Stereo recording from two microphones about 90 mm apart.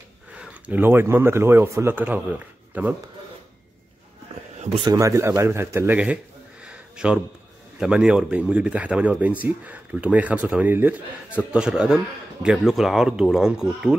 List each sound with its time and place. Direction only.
0.4 s speech: 20° right (ahead or behind)
4.8 s speech: 40° right (ahead or behind); by 6.1 s 20° right (ahead or behind)
6.6 s a sound: 10° right (ahead or behind)
7.8 s a man's voice: 10° right (ahead or behind)